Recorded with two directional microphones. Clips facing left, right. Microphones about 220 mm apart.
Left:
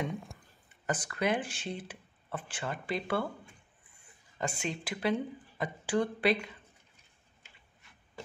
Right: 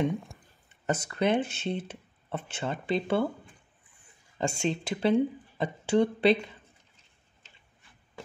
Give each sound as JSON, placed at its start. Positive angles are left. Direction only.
{"t": 0.1, "sound": "speech", "side_deg": 0}
{"t": 0.8, "sound": "speech", "side_deg": -25}
{"t": 4.4, "sound": "speech", "side_deg": -25}